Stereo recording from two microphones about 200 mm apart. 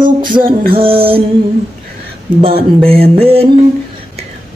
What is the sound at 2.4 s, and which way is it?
Music, 30° right (ahead or behind).